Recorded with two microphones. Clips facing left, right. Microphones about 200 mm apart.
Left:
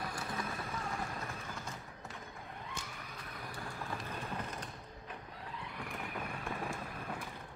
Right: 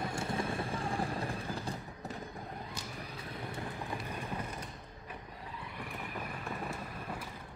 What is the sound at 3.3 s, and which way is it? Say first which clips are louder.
Vehicle: right 4 dB; 25° right (ahead or behind).